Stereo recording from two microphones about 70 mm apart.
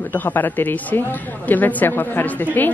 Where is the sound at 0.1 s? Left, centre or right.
Left.